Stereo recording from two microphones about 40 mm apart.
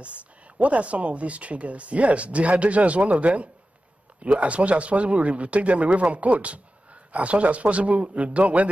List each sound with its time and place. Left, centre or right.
0.0 s speech: right